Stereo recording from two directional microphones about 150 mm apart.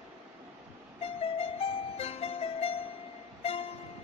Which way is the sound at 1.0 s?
40° left (ahead or behind).